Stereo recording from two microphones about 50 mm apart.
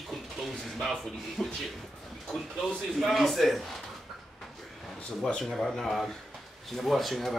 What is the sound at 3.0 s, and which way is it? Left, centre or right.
Speech, centre.